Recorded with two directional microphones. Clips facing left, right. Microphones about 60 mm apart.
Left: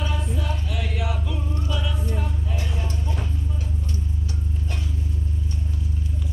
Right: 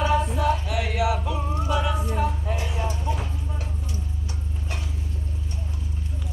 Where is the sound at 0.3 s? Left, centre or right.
Right.